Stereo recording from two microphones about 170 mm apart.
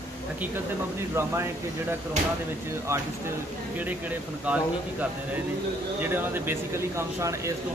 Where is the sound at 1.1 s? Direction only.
15° right (ahead or behind).